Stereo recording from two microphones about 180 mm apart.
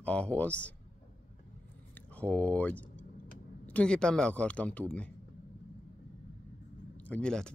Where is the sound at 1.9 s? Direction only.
10° left (ahead or behind).